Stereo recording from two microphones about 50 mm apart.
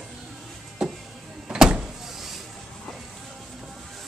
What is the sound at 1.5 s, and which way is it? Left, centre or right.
Power windows, centre.